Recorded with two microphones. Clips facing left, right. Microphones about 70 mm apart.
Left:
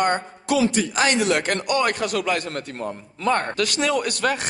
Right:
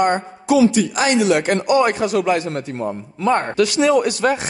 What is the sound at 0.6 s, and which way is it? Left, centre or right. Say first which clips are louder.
Speech: right 5 dB; left.